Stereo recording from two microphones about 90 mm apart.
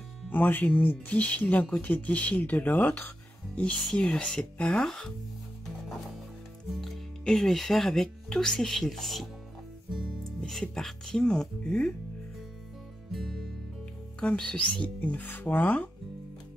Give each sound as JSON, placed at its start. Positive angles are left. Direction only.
{"t": 0.3, "sound": "speech", "side_deg": 20}
{"t": 3.7, "sound": "speech", "side_deg": 5}
{"t": 6.7, "sound": "speech", "side_deg": 0}
{"t": 13.1, "sound": "music", "side_deg": 0}
{"t": 14.2, "sound": "speech", "side_deg": 10}